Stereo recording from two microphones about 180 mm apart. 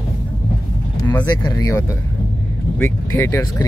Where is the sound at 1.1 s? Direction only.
10° left (ahead or behind).